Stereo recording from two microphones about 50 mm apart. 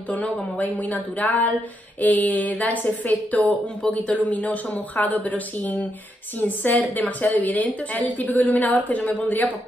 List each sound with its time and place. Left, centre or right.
0.1 s a woman's voice: left